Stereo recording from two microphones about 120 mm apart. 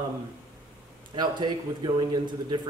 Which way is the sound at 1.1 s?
40° right (ahead or behind).